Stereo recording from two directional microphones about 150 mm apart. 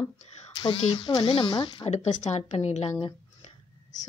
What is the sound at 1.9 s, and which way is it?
A woman's voice, 45° left (ahead or behind).